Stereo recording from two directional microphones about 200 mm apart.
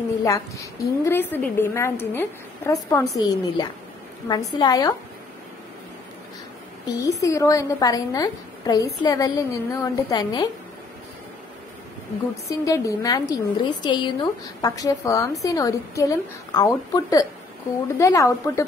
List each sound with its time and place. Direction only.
0.2 s a woman's voice: 15° left (ahead or behind)
6.9 s a woman's voice: 15° left (ahead or behind)
12.4 s a woman's voice: 15° left (ahead or behind)